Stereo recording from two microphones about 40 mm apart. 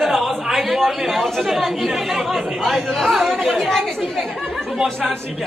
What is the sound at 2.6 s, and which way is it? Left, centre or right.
A man's voice, centre.